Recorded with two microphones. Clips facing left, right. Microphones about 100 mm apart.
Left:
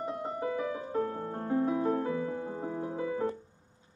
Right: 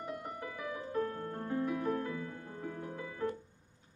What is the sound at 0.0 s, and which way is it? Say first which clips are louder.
Piano: left 8 dB; 25° left (ahead or behind).